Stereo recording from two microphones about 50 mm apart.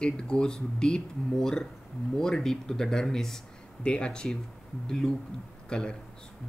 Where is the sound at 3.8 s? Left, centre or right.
Left.